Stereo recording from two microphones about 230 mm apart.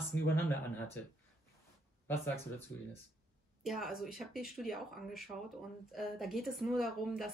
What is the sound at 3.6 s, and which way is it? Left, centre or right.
Speech, centre.